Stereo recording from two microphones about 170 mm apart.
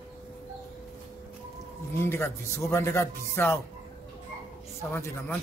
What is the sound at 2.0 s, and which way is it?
Speech, 15° left (ahead or behind).